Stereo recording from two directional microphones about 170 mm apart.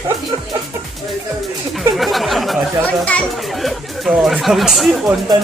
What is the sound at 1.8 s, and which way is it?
A child's voice, centre (ahead or behind).